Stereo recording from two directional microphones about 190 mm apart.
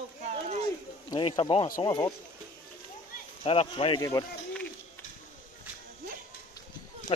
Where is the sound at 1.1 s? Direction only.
25° left (ahead or behind).